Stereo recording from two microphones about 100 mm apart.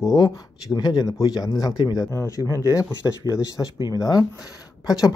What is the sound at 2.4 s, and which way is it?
Speech, 30° right (ahead or behind).